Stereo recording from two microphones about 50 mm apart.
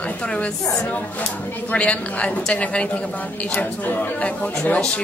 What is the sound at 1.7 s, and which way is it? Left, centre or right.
A woman's voice, left.